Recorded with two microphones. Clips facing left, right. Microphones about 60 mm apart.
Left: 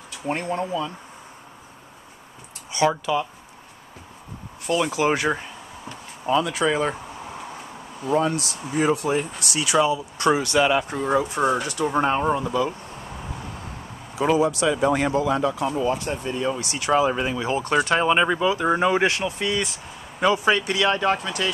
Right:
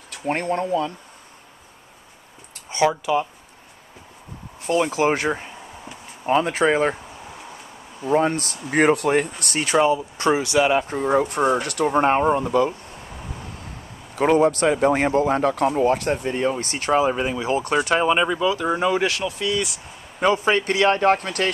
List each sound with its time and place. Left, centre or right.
0.1 s speech: right
3.1 s speech: centre
4.6 s speech: right
8.0 s speech: right
9.8 s speech: right
11.1 s speech: right
12.0 s speech: right
14.1 s speech: right
17.1 s speech: centre
17.8 s speech: centre
18.2 s speech: centre
20.2 s speech: right